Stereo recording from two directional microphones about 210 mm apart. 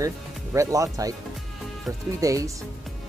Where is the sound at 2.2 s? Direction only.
15° right (ahead or behind).